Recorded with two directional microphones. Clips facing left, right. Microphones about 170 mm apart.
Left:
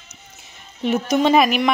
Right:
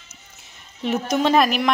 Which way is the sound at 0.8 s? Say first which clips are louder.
Left 3 dB; centre (ahead or behind).